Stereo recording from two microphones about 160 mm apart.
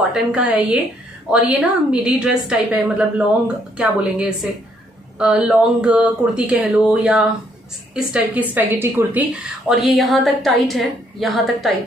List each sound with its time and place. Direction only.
0.1 s a woman's voice: 5° right (ahead or behind)
9.7 s speech: centre (ahead or behind)